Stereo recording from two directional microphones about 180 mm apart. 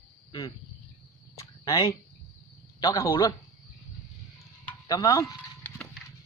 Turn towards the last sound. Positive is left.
turn(degrees=20)  # may be behind; listen again after turning